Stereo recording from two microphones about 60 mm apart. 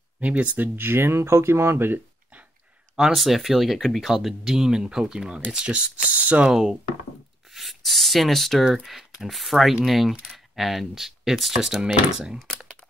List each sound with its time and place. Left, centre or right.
0.2 s speech: right
3.2 s speech: centre; by 6.5 s right
6.5 s speech: centre
7.5 s a sound: centre
8.8 s speech: centre